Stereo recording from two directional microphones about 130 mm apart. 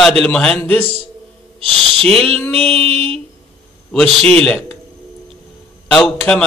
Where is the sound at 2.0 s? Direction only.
5° left (ahead or behind).